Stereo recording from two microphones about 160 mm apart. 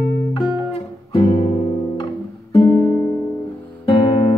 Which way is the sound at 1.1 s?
30° left (ahead or behind).